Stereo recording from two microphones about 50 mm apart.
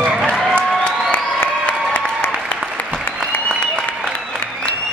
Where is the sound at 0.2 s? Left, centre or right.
Centre.